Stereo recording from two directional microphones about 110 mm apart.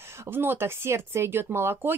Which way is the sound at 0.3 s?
20° right (ahead or behind).